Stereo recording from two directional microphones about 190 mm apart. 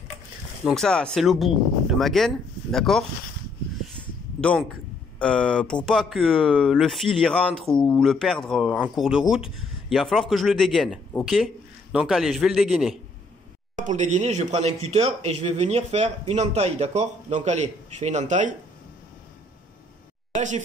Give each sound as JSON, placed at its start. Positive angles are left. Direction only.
{"t": 0.7, "sound": "a man's voice", "side_deg": 5}
{"t": 4.4, "sound": "a man's voice", "side_deg": 5}
{"t": 13.7, "sound": "speech", "side_deg": -40}
{"t": 20.3, "sound": "speech", "side_deg": -40}